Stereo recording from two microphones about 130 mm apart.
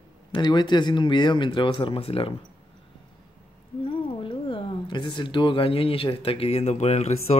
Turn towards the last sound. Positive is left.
turn(degrees=55)  # may be behind; listen again after turning